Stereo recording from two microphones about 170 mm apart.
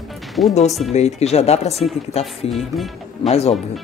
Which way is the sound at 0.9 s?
40° left (ahead or behind).